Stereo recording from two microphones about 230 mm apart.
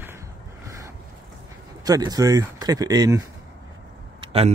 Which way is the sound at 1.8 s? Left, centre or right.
Centre.